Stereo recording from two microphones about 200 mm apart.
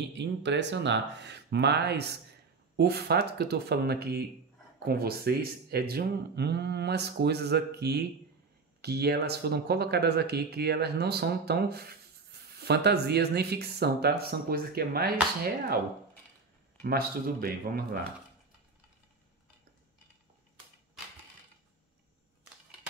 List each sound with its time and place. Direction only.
0.1 s speech: 60° right (ahead or behind)
16.8 s speech: 50° right (ahead or behind)